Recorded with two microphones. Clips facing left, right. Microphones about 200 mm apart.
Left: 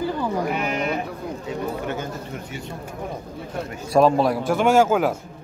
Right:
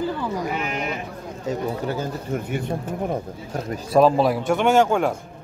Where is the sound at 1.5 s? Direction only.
35° right (ahead or behind).